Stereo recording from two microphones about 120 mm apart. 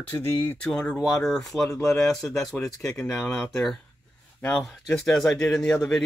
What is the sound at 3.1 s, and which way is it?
Speech, 20° left (ahead or behind).